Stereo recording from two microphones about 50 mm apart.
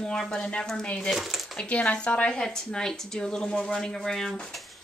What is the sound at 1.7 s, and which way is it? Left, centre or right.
Speech, left.